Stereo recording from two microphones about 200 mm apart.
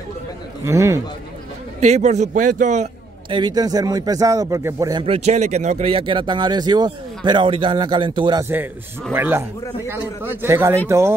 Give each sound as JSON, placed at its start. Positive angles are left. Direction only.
{"t": 0.7, "sound": "a man's voice", "side_deg": -15}
{"t": 1.8, "sound": "a man's voice", "side_deg": -35}
{"t": 3.3, "sound": "speech", "side_deg": -20}
{"t": 9.1, "sound": "a man's voice", "side_deg": -10}